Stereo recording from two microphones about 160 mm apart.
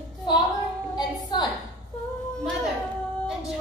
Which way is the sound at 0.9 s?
25° left (ahead or behind).